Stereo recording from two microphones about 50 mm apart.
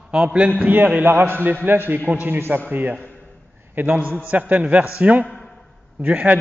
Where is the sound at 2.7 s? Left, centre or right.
Right.